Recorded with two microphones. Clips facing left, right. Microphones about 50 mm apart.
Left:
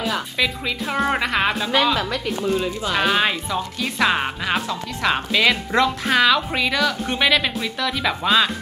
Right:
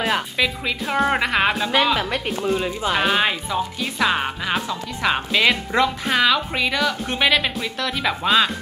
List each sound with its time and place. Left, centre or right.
0.4 s speech: centre
2.0 s speech: right
2.4 s speech: centre
4.1 s speech: centre
4.6 s speech: centre